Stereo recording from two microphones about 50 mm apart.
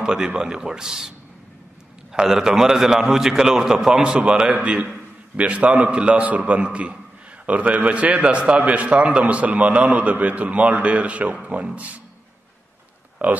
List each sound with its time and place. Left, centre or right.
0.0 s a man's voice: centre
2.1 s a man's voice: centre; by 12.0 s right
13.2 s speech: right